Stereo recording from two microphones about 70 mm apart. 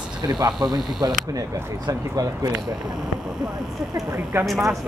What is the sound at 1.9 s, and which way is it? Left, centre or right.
Speech, right.